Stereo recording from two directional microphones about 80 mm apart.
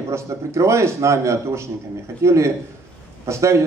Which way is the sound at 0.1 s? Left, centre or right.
Right.